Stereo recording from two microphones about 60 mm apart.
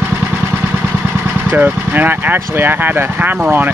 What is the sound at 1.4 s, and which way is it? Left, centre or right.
Speech, right.